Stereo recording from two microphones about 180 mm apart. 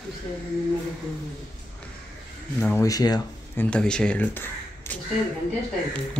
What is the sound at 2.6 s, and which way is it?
Speech, 5° left (ahead or behind).